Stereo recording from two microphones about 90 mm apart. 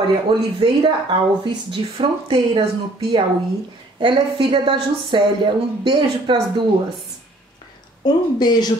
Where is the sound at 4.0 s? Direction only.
65° right (ahead or behind).